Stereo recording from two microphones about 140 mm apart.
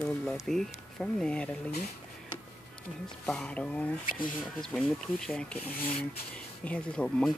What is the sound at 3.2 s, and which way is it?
Speech, 10° left (ahead or behind).